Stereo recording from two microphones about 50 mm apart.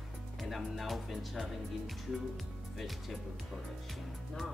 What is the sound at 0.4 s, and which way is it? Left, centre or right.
Speech, centre.